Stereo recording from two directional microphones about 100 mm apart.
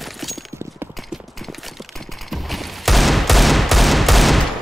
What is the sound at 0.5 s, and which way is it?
Clip-clop, 25° right (ahead or behind).